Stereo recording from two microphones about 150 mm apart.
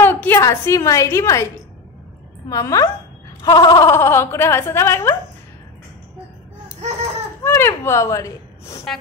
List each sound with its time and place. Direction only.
0.0 s a woman's voice: 15° left (ahead or behind)
7.4 s speech: 15° left (ahead or behind)